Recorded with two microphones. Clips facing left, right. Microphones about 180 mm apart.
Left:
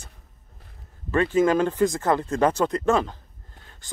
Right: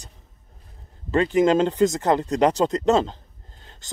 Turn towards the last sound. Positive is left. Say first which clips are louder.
# right 2 dB
turn(degrees=-25)  # may be behind; listen again after turning